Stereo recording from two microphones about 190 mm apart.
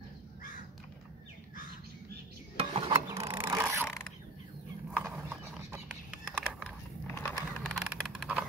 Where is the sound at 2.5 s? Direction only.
30° right (ahead or behind).